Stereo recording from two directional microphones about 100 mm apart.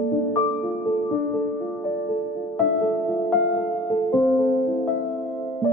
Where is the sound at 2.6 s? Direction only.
10° left (ahead or behind).